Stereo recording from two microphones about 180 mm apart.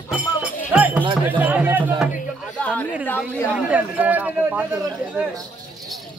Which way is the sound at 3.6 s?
10° right (ahead or behind).